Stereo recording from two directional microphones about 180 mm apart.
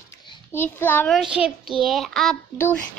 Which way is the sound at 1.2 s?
5° right (ahead or behind).